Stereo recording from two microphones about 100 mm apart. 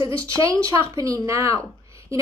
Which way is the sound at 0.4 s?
35° right (ahead or behind).